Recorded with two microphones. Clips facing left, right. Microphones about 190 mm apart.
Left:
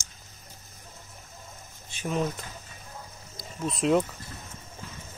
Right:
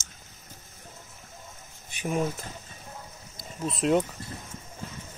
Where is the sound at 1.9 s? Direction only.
15° right (ahead or behind).